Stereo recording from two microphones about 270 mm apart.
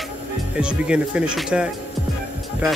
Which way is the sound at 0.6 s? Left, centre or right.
Centre.